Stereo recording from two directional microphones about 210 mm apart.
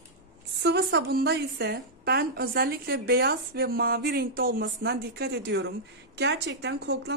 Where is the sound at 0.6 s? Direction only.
50° right (ahead or behind).